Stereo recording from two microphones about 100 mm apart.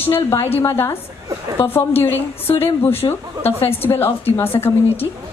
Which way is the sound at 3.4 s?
20° left (ahead or behind).